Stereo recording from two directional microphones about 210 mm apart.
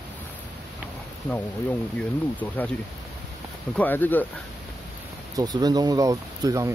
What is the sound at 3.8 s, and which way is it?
Speech, 10° left (ahead or behind).